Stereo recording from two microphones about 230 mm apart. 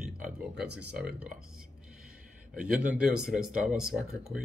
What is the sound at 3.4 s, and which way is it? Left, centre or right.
Speech, right.